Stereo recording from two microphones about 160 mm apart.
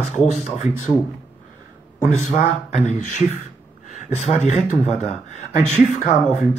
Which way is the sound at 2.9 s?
50° left (ahead or behind).